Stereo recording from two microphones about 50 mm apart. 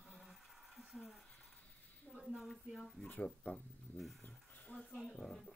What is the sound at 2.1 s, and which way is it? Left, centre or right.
Speech, centre.